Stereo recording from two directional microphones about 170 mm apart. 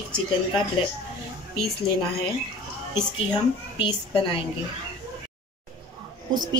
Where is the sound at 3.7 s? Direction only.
30° left (ahead or behind).